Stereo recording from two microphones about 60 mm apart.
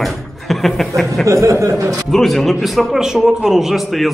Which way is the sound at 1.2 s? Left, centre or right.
Right.